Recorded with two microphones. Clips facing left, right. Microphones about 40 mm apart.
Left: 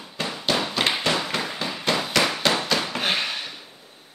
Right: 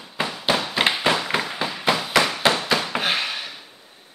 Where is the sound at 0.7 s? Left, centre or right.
Centre.